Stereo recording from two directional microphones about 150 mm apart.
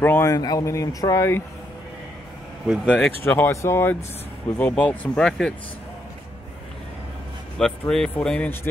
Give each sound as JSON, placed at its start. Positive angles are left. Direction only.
{"t": 0.0, "sound": "speech", "side_deg": 15}
{"t": 2.9, "sound": "speech", "side_deg": 10}
{"t": 7.5, "sound": "speech", "side_deg": 5}